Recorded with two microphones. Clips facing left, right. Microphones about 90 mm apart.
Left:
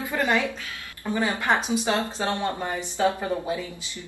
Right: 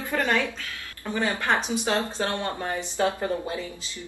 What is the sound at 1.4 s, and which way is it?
Speech, 15° left (ahead or behind).